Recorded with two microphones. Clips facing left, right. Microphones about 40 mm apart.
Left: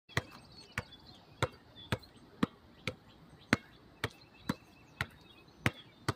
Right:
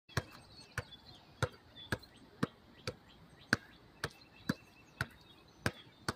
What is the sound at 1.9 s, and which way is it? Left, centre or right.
Basketball bounce, left.